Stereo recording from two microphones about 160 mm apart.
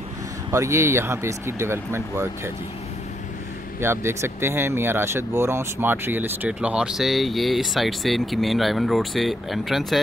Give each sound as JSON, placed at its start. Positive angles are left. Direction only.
{"t": 0.5, "sound": "speech", "side_deg": -20}
{"t": 3.8, "sound": "speech", "side_deg": -15}